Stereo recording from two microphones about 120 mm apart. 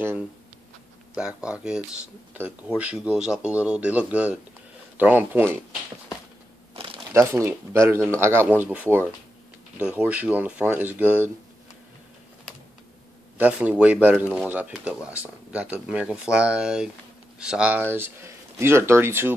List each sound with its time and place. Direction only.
1.1 s speech: 10° right (ahead or behind)
6.7 s crumpling: 45° right (ahead or behind)
7.1 s speech: 25° right (ahead or behind)
13.4 s speech: 10° right (ahead or behind)